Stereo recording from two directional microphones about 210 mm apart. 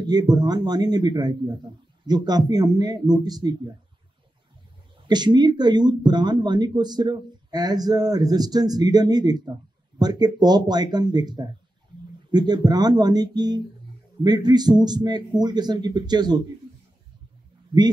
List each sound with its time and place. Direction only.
0.0 s speech: 20° right (ahead or behind)
5.0 s speech: 20° right (ahead or behind)